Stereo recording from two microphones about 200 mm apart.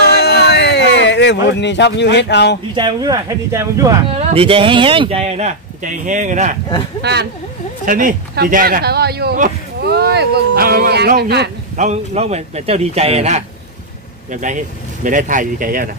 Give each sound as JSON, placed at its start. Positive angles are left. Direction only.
{"t": 0.1, "sound": "a sound", "side_deg": 55}
{"t": 2.7, "sound": "speech", "side_deg": -20}
{"t": 4.1, "sound": "speech", "side_deg": -30}
{"t": 7.0, "sound": "speech", "side_deg": -55}
{"t": 7.8, "sound": "speech", "side_deg": -45}
{"t": 11.7, "sound": "speech", "side_deg": -35}